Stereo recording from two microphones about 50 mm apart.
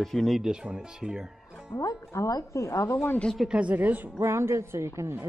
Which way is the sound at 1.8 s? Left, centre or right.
Left.